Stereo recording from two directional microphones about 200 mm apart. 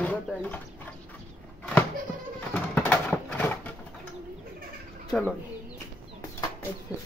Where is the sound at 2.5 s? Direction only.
10° left (ahead or behind).